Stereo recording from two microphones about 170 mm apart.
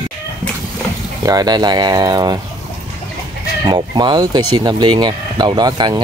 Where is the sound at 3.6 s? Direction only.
25° right (ahead or behind).